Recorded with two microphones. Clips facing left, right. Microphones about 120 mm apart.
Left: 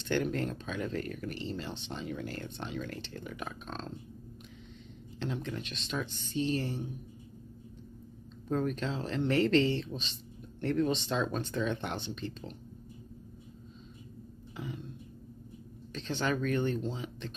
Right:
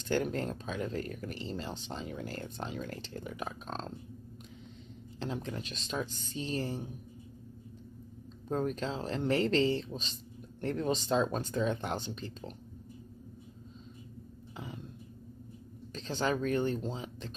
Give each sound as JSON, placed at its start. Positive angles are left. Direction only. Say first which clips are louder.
{"t": 0.1, "sound": "speech", "louder": "even", "side_deg": -30}
{"t": 5.2, "sound": "speech", "louder": "left 1 dB", "side_deg": -35}
{"t": 8.5, "sound": "speech", "louder": "left 1 dB", "side_deg": -30}
{"t": 15.9, "sound": "speech", "louder": "even", "side_deg": -35}